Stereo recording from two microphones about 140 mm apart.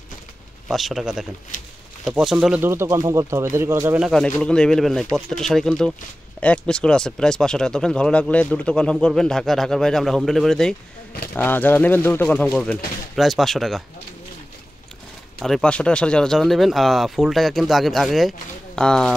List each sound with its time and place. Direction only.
0.7 s speech: centre (ahead or behind)
2.7 s speech: 20° right (ahead or behind)
4.0 s speech: 5° left (ahead or behind)
15.4 s speech: 5° left (ahead or behind)